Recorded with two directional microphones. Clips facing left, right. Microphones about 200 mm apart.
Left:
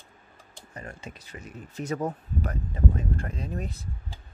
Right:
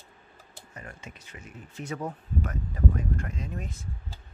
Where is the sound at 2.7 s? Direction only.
25° left (ahead or behind).